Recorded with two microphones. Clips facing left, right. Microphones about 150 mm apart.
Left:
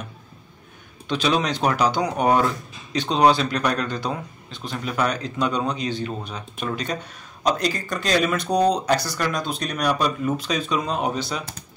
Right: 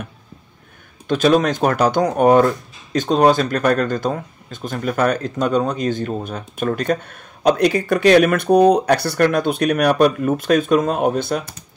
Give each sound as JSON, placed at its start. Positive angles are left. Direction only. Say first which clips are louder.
{"t": 1.0, "sound": "speech", "louder": "right 7 dB", "side_deg": -50}